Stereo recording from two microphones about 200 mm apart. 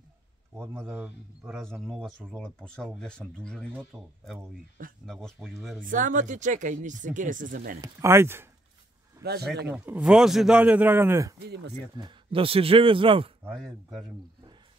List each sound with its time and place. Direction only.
0.6 s a man's voice: 10° right (ahead or behind)
5.9 s speech: 40° right (ahead or behind)
7.8 s a man's voice: 15° right (ahead or behind)
9.2 s speech: 50° right (ahead or behind)
9.7 s a man's voice: 10° right (ahead or behind)
11.4 s speech: 55° right (ahead or behind)
11.9 s a man's voice: 25° right (ahead or behind)
13.5 s a man's voice: centre (ahead or behind)